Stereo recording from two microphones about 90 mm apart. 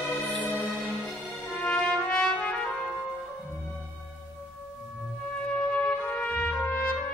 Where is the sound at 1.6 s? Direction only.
10° left (ahead or behind).